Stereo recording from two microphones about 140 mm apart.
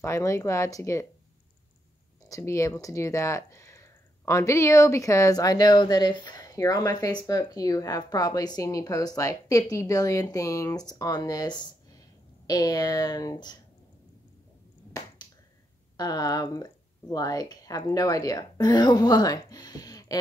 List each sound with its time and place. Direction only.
0.0 s speech: 20° left (ahead or behind)
2.2 s speech: 20° left (ahead or behind)
14.9 s finger snapping: 25° left (ahead or behind)
16.0 s speech: 25° left (ahead or behind)